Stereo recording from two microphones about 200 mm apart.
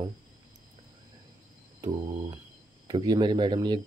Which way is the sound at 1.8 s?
20° right (ahead or behind).